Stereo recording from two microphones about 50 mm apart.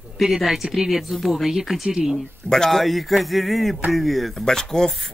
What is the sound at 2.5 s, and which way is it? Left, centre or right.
Speech, centre.